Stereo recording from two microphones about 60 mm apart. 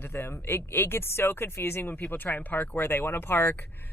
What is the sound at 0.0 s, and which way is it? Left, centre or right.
Speech, left.